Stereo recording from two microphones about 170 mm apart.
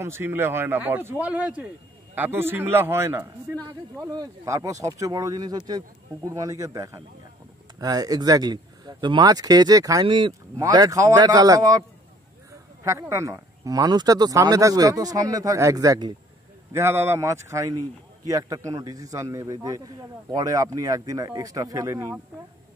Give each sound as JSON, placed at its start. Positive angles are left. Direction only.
{"t": 0.0, "sound": "speech", "side_deg": -15}
{"t": 12.8, "sound": "speech", "side_deg": -15}